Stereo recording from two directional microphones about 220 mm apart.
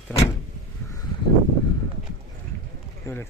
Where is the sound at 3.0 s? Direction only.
10° left (ahead or behind).